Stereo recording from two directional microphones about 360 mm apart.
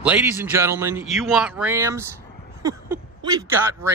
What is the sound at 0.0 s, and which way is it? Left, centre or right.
Speech, centre.